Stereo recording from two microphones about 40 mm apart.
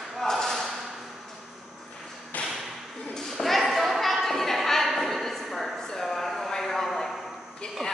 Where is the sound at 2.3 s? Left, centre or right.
Left.